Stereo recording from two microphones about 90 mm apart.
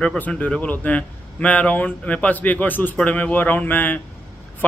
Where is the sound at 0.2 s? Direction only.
15° left (ahead or behind).